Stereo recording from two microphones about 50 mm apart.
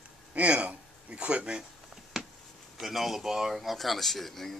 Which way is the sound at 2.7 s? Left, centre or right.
Centre.